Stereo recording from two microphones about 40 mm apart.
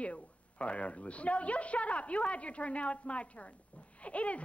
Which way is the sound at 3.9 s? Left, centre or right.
Left.